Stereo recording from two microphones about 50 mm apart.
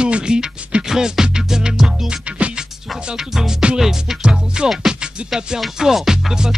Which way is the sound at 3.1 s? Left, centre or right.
Centre.